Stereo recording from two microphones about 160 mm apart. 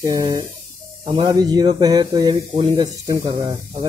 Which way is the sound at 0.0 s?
20° right (ahead or behind).